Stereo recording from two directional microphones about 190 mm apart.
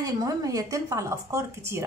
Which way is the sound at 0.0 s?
20° right (ahead or behind).